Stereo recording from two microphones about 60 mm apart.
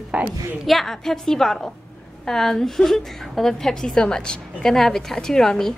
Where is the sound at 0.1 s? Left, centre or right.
Right.